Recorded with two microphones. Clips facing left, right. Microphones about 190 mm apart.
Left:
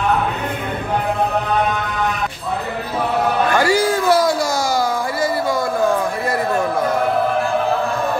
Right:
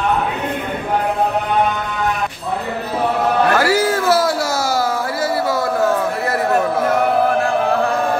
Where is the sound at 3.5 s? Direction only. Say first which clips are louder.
Even; 5° right (ahead or behind).